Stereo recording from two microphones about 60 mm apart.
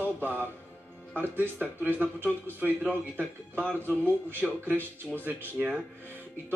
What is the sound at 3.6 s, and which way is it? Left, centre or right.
Speech, left.